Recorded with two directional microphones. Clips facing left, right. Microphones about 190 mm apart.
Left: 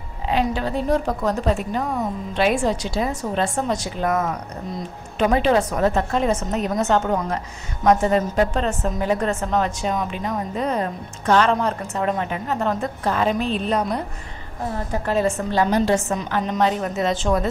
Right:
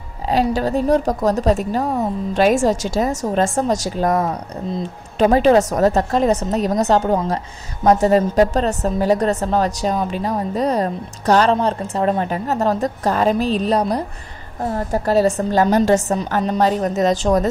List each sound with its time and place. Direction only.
0.3 s a woman's voice: 40° right (ahead or behind)